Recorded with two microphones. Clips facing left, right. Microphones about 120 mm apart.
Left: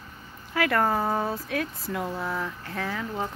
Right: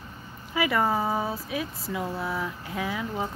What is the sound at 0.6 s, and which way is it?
Speech, 5° right (ahead or behind).